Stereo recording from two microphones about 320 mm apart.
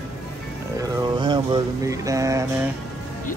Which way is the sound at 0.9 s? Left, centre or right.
Centre.